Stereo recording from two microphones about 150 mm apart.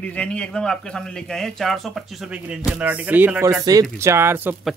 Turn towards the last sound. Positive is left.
turn(degrees=-15)  # may be behind; listen again after turning